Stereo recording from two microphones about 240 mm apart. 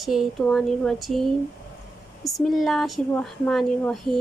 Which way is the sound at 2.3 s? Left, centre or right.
Centre.